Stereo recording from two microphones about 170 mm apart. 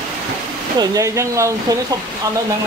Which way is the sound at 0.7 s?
20° right (ahead or behind).